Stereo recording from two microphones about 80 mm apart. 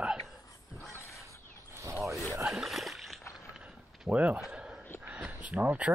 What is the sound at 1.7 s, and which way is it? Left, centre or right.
Zipper, right.